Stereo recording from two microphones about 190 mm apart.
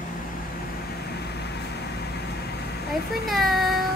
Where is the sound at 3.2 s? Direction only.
Centre (ahead or behind).